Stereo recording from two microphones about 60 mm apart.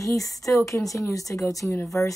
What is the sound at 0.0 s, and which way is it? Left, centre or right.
A woman's voice, left.